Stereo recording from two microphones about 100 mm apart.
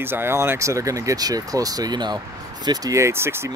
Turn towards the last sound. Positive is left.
turn(degrees=-25)  # may be behind; listen again after turning